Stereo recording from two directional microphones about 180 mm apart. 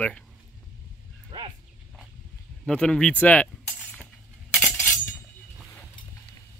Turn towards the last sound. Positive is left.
turn(degrees=10)  # may be behind; listen again after turning